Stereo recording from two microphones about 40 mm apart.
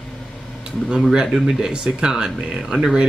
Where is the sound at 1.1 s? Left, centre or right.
Centre.